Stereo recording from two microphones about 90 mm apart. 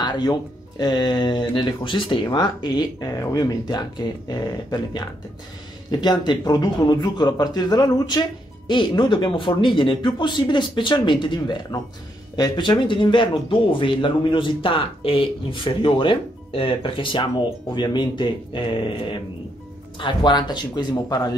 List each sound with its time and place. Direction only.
0.0 s speech: 50° left (ahead or behind)
3.2 s a man's voice: 35° left (ahead or behind); by 18.6 s 60° left (ahead or behind)
20.0 s speech: 60° left (ahead or behind)